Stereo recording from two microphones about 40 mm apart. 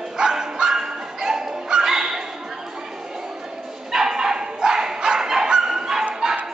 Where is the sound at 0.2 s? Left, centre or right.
Centre.